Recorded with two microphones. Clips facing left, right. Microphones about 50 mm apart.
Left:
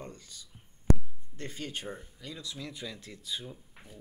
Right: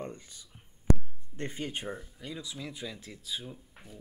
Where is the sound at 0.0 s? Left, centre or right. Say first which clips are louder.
Right 4 dB; right.